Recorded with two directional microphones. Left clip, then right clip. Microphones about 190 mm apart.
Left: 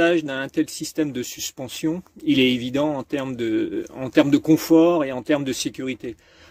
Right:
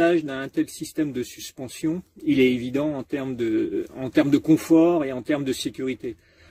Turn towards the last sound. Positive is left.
turn(degrees=-10)  # may be behind; listen again after turning